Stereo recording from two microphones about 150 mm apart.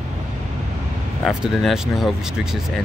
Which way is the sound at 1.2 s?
Centre (ahead or behind).